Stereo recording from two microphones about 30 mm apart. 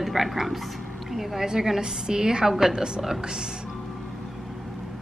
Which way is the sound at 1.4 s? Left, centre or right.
Centre.